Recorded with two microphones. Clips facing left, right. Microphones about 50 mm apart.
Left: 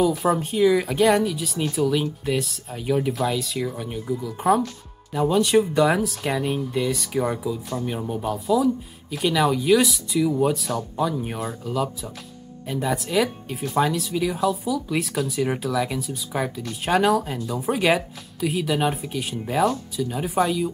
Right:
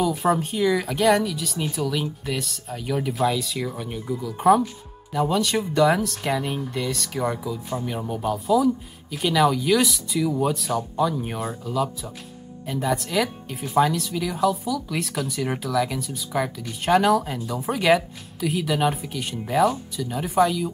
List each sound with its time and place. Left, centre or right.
0.0 s speech: centre
5.3 s speech: centre
17.6 s speech: centre
17.8 s speech: centre